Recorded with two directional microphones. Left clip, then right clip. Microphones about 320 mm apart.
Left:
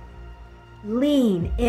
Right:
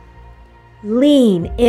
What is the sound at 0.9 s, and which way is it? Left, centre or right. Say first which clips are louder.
Speech: right 9 dB; right.